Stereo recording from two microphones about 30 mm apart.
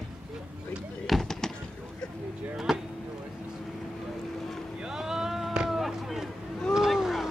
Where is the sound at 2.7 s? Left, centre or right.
Centre.